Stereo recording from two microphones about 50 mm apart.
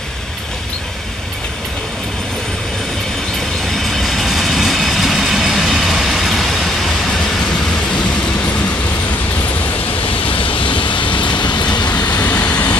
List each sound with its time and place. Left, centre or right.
3.8 s vehicle: centre
12.2 s vehicle: left